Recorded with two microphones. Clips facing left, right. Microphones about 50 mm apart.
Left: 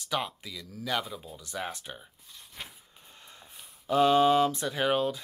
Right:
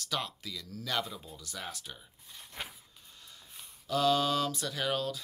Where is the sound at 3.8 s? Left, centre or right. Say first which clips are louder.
Left 6 dB; left.